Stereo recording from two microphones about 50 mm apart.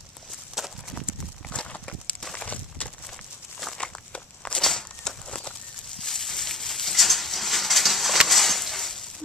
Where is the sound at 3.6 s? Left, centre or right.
Centre.